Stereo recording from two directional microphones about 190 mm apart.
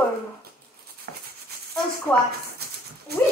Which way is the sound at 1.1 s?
60° right (ahead or behind).